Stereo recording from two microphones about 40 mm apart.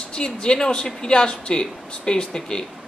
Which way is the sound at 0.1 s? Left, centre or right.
Left.